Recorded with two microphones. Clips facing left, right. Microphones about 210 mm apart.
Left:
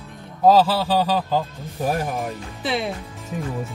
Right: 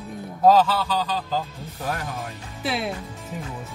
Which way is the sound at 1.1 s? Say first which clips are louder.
Left 5 dB; 55° left (ahead or behind).